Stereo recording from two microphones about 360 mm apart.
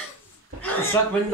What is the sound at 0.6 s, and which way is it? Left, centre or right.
Chuckle, centre.